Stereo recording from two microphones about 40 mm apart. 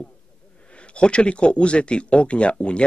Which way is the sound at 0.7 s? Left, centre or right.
Left.